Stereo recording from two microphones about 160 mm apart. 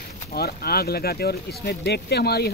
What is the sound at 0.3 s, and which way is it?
Speech, 75° left (ahead or behind).